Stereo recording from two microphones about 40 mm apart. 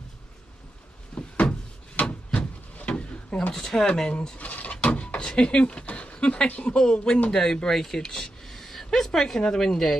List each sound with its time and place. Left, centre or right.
1.1 s door: left
3.5 s speech: centre
4.4 s drawer open or close: left
4.7 s a sound: left
5.9 s speech: left
6.7 s speech: left